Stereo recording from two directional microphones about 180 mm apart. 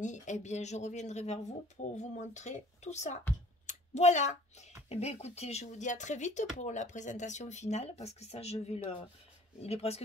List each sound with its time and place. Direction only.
0.0 s speech: 40° left (ahead or behind)